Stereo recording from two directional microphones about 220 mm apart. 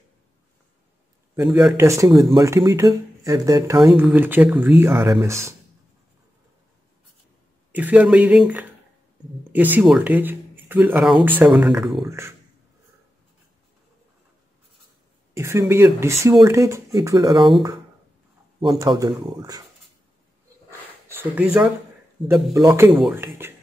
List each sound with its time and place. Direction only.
1.3 s speech: 10° right (ahead or behind)
7.7 s speech: 5° right (ahead or behind)
12.1 s speech: 10° right (ahead or behind)
15.3 s speech: 10° right (ahead or behind)
21.1 s speech: 10° right (ahead or behind)